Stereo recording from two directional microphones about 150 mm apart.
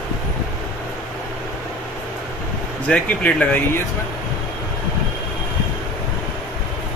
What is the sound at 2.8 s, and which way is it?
Speech, 10° left (ahead or behind).